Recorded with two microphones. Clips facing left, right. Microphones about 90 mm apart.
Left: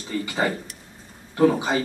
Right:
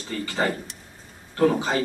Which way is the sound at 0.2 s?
15° left (ahead or behind).